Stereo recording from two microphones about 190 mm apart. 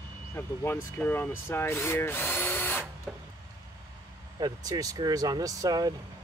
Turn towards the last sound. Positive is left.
turn(degrees=-20)  # may be behind; listen again after turning